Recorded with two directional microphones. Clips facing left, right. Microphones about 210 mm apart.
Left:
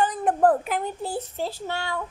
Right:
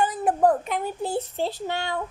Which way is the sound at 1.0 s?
20° right (ahead or behind).